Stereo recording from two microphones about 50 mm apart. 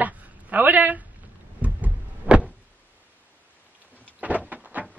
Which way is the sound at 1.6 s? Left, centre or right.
Right.